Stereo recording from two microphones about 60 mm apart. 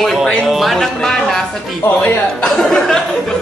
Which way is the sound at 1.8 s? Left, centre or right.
Left.